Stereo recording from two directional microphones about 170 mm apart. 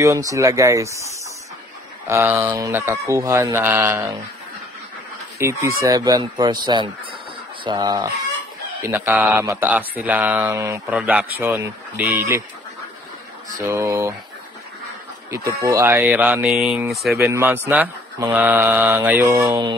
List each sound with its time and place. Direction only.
0.0 s speech: 20° right (ahead or behind)
2.0 s speech: 15° right (ahead or behind)
5.4 s speech: 15° right (ahead or behind)
8.8 s speech: 15° right (ahead or behind)
13.6 s speech: 15° right (ahead or behind)
15.3 s speech: 20° right (ahead or behind); by 17.2 s centre (ahead or behind)
17.2 s speech: 15° right (ahead or behind)